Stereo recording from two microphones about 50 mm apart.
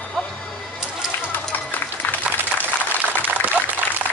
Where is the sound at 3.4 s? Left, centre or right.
Right.